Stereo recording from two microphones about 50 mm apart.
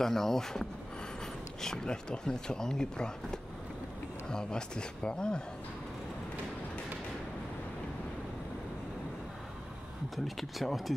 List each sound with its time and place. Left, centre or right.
0.0 s speech: centre
10.1 s speech: centre